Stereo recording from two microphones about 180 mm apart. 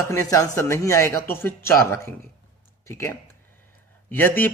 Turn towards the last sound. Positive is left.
turn(degrees=10)  # may be behind; listen again after turning